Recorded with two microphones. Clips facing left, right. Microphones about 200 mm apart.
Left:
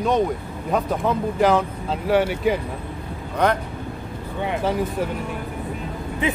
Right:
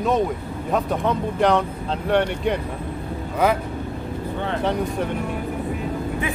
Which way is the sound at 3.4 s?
5° right (ahead or behind).